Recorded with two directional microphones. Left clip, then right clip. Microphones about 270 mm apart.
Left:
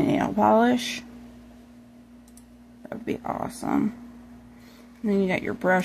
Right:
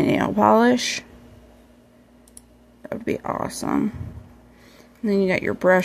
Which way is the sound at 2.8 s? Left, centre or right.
Centre.